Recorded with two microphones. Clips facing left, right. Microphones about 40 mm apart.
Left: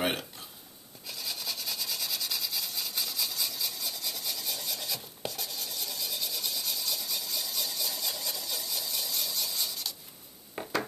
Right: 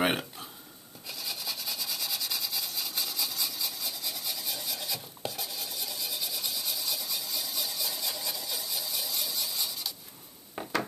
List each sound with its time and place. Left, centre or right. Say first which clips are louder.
0.0 s speech: right 3 dB; centre
1.0 s rub: even; centre
10.6 s a sound: even; centre